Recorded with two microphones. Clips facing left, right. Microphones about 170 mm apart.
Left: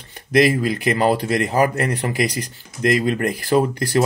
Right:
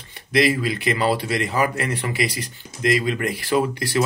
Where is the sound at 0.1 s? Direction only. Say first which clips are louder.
Left 3 dB; 45° left (ahead or behind).